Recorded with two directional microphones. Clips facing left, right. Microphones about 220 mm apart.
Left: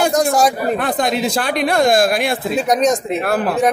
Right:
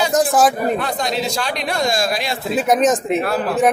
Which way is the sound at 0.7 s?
55° left (ahead or behind).